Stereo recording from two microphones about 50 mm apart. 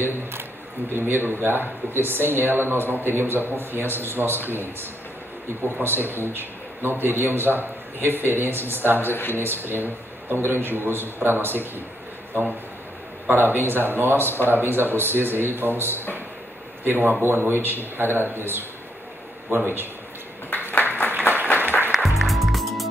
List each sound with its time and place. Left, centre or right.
0.9 s speech: right
5.6 s speech: right
9.1 s speech: left
9.4 s speech: right
13.3 s speech: right
20.5 s a sound: left
21.5 s music: right
21.9 s music: centre